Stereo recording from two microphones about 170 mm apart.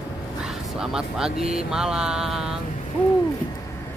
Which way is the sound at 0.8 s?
5° right (ahead or behind).